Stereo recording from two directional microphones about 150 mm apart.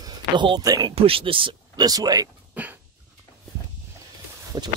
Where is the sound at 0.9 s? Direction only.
40° right (ahead or behind).